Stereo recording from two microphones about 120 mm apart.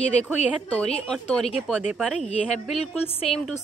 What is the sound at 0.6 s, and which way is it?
A woman's voice, 10° left (ahead or behind).